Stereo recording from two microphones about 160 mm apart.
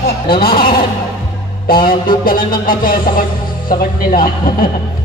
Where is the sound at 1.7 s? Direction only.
65° left (ahead or behind).